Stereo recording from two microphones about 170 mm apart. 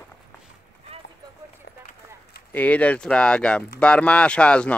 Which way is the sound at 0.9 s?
35° right (ahead or behind).